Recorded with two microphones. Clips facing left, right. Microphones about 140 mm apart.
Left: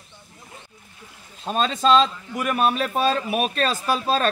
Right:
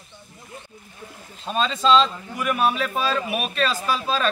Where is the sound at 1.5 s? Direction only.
45° left (ahead or behind).